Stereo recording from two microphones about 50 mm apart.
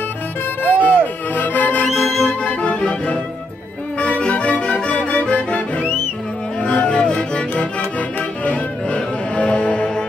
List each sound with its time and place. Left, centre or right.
0.7 s music: left
1.9 s music: centre
2.4 s music: left
4.0 s accordion: left
4.8 s music: left